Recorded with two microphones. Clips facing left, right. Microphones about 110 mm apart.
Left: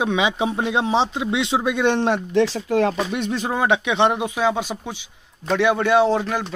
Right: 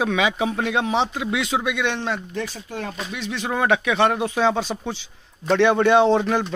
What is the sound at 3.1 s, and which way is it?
Speech, 45° left (ahead or behind).